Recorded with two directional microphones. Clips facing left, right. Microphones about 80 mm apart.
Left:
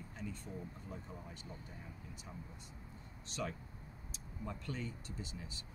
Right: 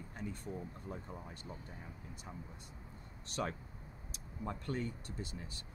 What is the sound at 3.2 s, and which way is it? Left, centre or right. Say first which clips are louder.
Speech: right 3 dB; right.